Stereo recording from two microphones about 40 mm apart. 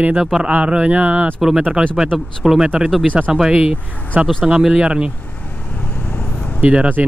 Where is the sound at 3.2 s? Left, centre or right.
Right.